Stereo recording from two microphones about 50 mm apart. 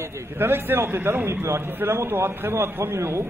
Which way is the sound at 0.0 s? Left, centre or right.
Right.